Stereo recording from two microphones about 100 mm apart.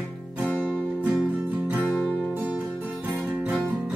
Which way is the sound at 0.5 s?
20° right (ahead or behind).